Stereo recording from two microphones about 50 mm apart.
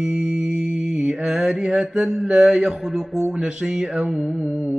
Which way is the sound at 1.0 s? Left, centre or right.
Centre.